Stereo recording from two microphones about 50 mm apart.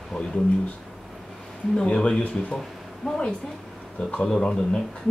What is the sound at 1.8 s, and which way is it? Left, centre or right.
A man's voice, centre.